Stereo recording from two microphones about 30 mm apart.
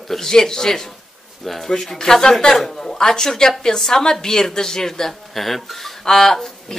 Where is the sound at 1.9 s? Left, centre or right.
Left.